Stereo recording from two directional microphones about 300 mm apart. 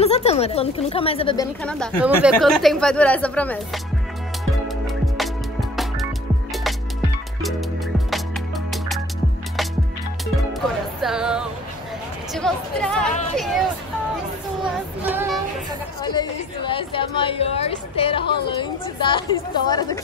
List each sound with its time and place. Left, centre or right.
0.0 s a woman's voice: left; by 3.8 s centre
4.6 s music: centre
11.0 s music: centre
12.4 s speech: centre
14.6 s music: centre
16.0 s a woman's voice: centre